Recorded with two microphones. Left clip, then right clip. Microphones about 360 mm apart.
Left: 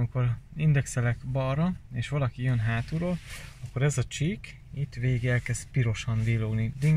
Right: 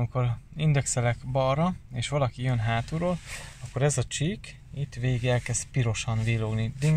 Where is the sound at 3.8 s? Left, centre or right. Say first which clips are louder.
Right 3 dB; centre.